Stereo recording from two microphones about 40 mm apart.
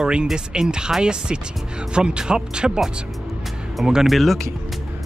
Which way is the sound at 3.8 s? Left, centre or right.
Centre.